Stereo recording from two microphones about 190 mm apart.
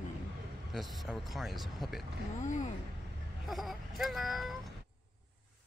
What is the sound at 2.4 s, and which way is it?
Speech, 40° left (ahead or behind).